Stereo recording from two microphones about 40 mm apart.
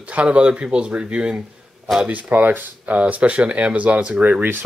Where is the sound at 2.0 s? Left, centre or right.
Right.